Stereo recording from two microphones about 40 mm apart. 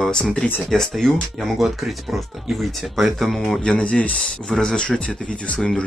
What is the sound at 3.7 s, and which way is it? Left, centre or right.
Speech, left.